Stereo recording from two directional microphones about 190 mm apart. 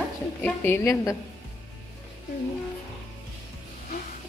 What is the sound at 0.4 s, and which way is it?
Speech, 15° left (ahead or behind).